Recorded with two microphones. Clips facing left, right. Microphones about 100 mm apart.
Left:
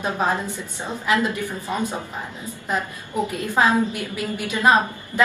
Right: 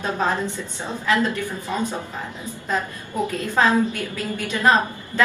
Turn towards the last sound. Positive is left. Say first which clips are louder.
# left 1 dB
turn(degrees=15)  # may be behind; listen again after turning